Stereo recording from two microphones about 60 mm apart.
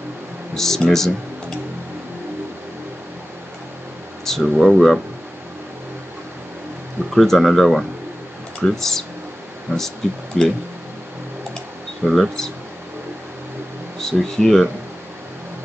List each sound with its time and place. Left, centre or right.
0.6 s speech: centre
4.2 s a sound: centre
4.6 s speech: centre
7.2 s speech: centre
12.1 s speech: centre
14.0 s speech: centre